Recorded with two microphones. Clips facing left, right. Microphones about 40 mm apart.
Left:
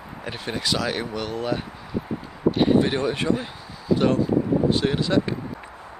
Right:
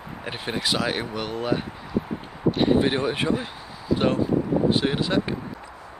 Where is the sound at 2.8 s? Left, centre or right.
Centre.